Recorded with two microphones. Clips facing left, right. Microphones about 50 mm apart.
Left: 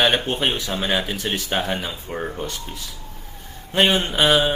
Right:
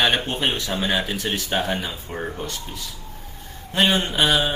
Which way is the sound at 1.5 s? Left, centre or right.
Centre.